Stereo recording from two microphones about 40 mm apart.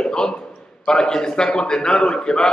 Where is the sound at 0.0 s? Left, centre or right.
Left.